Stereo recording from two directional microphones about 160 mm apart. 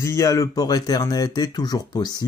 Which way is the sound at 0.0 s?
20° left (ahead or behind).